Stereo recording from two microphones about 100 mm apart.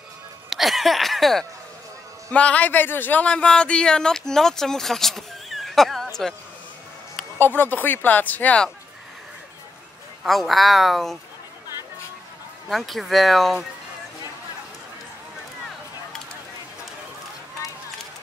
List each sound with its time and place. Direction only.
0.5 s a sound: centre (ahead or behind)
2.3 s speech: 15° left (ahead or behind)
7.3 s speech: 20° left (ahead or behind)
10.2 s speech: centre (ahead or behind)
12.6 s speech: centre (ahead or behind)